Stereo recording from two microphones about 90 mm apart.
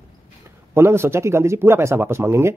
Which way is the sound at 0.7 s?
30° right (ahead or behind).